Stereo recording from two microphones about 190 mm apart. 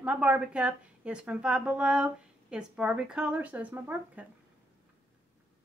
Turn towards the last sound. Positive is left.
turn(degrees=-10)  # may be behind; listen again after turning